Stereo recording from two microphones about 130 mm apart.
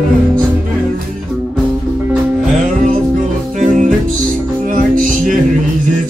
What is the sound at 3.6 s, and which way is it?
Music, 90° right.